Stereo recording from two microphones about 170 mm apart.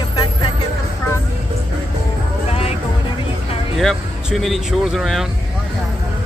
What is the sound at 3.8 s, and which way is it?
Speech, centre (ahead or behind).